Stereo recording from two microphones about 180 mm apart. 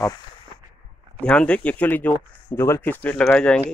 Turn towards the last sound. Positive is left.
turn(degrees=5)  # may be behind; listen again after turning